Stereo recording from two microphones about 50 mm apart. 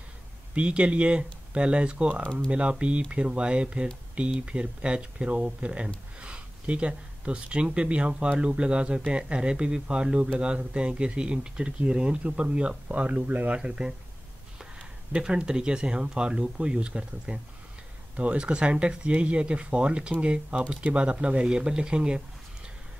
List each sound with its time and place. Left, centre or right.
0.6 s speech: right
13.6 s speech: centre
15.1 s speech: centre